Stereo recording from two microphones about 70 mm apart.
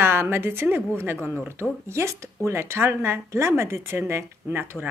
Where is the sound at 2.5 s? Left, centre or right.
Right.